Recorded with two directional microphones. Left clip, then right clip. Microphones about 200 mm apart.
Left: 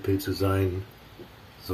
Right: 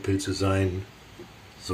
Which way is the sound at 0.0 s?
5° left (ahead or behind).